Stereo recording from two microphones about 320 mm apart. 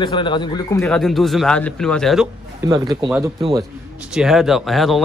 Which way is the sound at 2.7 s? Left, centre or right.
Centre.